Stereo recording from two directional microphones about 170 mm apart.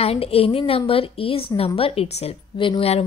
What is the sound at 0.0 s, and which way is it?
A woman's voice, 35° left (ahead or behind).